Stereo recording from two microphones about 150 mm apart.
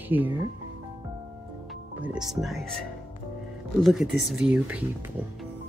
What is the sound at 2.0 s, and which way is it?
Speech, 5° right (ahead or behind).